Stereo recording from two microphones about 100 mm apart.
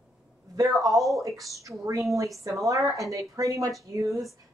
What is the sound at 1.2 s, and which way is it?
A woman's voice, 30° right (ahead or behind).